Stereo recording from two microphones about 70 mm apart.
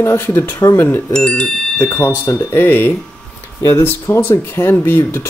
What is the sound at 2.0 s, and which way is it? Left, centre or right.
Speech, left.